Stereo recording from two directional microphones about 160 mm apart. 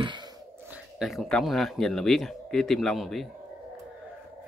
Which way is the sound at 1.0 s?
Centre (ahead or behind).